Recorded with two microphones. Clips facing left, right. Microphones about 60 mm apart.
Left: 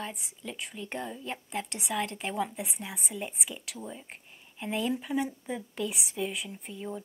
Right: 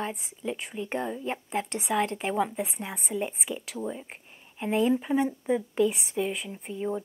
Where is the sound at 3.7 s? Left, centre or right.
Centre.